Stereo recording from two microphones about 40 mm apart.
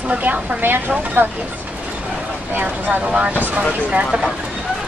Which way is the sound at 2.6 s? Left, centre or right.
Right.